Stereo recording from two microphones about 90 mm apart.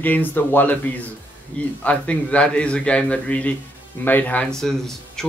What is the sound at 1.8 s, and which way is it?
Speech, 15° left (ahead or behind).